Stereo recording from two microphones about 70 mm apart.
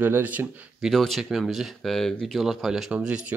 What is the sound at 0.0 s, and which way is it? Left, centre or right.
Speech, right.